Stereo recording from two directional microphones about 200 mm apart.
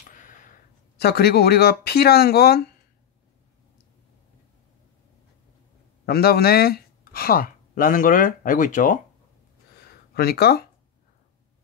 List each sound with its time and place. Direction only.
0.1 s speech: 40° left (ahead or behind)
6.0 s speech: 50° left (ahead or behind)
9.8 s a sound: 50° left (ahead or behind)